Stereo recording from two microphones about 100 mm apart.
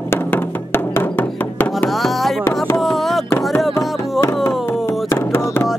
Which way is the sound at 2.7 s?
Centre (ahead or behind).